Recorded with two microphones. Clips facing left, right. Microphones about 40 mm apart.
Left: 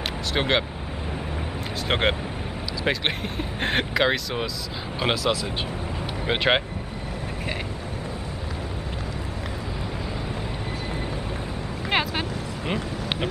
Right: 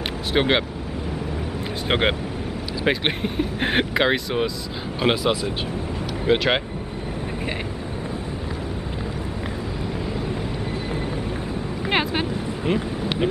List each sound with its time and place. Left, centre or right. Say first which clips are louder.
0.3 s speech: right 3 dB; centre
1.9 s speech: right 2 dB; centre
6.2 s speech: right 2 dB; centre
11.9 s vehicle: right 2 dB; centre